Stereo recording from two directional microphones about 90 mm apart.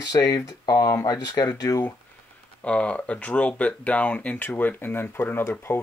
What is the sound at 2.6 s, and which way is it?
Speech, 15° left (ahead or behind).